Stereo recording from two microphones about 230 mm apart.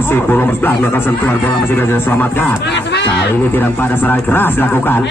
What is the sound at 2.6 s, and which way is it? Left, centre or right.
Speech, left.